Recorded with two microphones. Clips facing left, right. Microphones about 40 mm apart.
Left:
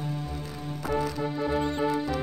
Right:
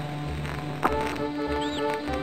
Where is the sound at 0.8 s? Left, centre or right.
Right.